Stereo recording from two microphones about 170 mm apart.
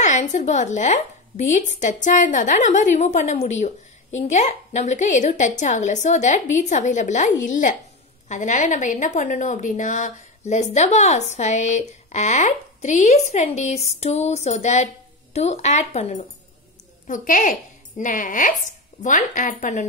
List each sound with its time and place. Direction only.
0.0 s a woman's voice: 45° left (ahead or behind)